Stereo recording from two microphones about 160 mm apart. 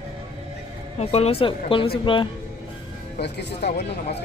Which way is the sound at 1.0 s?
40° left (ahead or behind).